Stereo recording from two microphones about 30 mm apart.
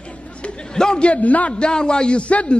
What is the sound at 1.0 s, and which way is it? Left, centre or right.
Speech, left.